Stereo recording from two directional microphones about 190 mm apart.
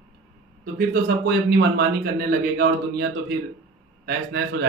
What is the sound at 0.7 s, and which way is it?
A man's voice, 60° right (ahead or behind).